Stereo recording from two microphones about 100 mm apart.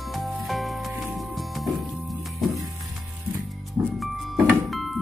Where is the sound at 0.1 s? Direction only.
Centre (ahead or behind).